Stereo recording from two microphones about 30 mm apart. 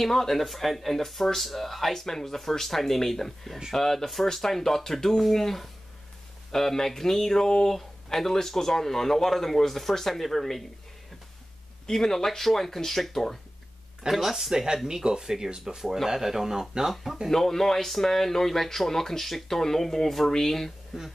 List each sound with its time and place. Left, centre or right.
0.0 s speech: centre
11.9 s speech: centre
14.1 s speech: centre
14.5 s speech: centre
17.3 s speech: centre
20.9 s speech: centre